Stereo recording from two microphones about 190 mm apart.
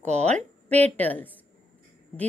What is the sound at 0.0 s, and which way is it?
Speech, 35° right (ahead or behind).